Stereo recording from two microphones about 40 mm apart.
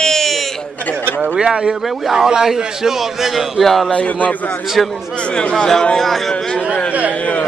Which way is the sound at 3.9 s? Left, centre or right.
Left.